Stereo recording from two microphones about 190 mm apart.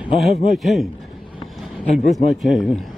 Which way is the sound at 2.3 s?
Centre (ahead or behind).